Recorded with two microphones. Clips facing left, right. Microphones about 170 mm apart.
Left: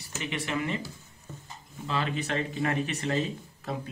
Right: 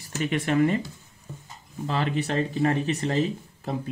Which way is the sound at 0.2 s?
45° right (ahead or behind).